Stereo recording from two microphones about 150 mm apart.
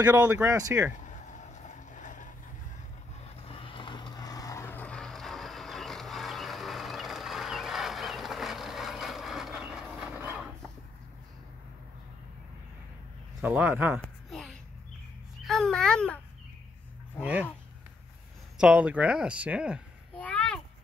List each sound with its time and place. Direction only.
0.0 s speech: 15° right (ahead or behind)
1.0 s vehicle: 55° left (ahead or behind)
3.4 s vehicle: 35° left (ahead or behind); by 10.5 s 5° right (ahead or behind)
13.4 s speech: 10° right (ahead or behind)
14.0 s a sound: centre (ahead or behind)
15.4 s a child's voice: centre (ahead or behind)
17.2 s speech: 10° right (ahead or behind)
18.6 s speech: 10° right (ahead or behind)
20.2 s a sound: 10° left (ahead or behind)